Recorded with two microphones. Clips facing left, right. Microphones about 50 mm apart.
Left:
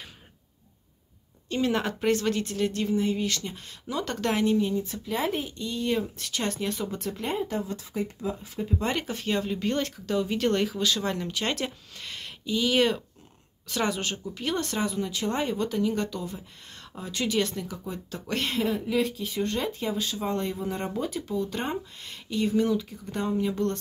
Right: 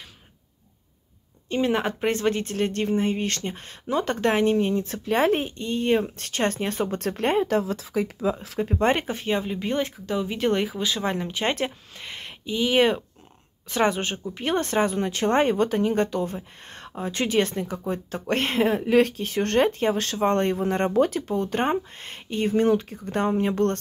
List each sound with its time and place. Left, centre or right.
1.5 s speech: right
4.7 s speech: right
8.7 s speech: right
18.8 s speech: right